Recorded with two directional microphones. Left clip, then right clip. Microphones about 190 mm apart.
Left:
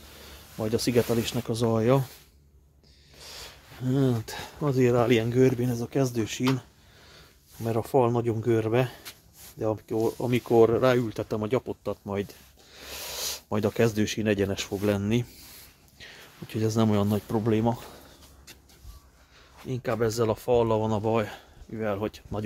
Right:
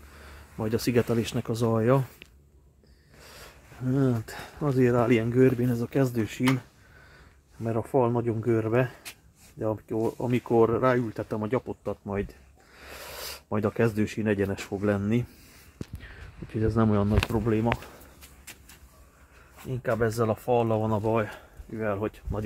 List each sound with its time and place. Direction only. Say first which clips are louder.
0.6 s speech: left 1 dB; 5° right (ahead or behind)
3.8 s speech: even; 10° left (ahead or behind)
7.6 s speech: left 1 dB; 10° left (ahead or behind)
16.5 s speech: even; 15° left (ahead or behind)
19.7 s speech: even; 5° left (ahead or behind)